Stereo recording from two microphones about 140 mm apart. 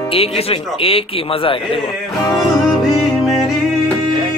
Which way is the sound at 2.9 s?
Centre (ahead or behind).